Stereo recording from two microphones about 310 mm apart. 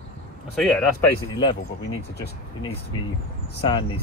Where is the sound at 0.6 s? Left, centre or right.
Centre.